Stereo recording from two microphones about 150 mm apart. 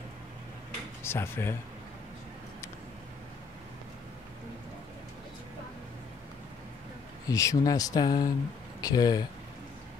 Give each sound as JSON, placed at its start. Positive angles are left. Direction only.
{"t": 1.0, "sound": "speech", "side_deg": 15}
{"t": 7.2, "sound": "speech", "side_deg": 20}